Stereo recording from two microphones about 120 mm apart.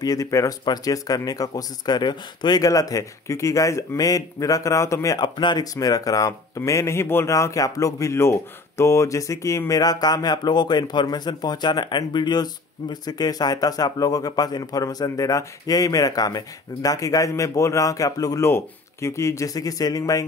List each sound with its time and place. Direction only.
0.0 s speech: 30° left (ahead or behind)